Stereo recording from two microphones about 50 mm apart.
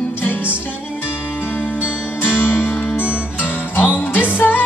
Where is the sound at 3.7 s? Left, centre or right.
Left.